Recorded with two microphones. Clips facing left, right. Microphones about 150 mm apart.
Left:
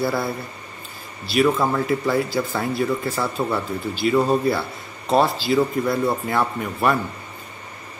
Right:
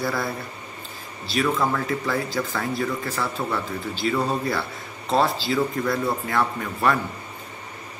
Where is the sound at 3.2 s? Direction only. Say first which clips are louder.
Left 3 dB; 25° left (ahead or behind).